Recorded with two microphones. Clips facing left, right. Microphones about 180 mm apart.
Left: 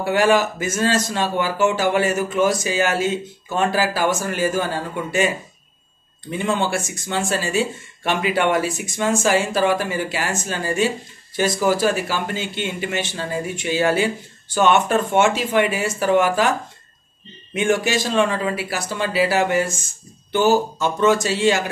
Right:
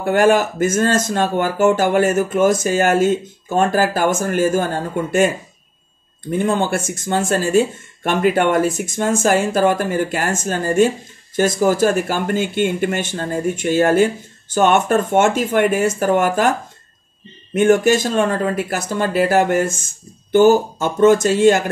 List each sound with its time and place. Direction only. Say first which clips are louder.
0.0 s speech: right 3 dB; 50° right (ahead or behind)
6.3 s speech: right 4 dB; 50° right (ahead or behind)
17.6 s speech: right 6 dB; 50° right (ahead or behind)